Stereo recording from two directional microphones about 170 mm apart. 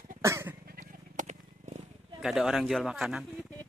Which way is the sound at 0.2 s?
15° right (ahead or behind).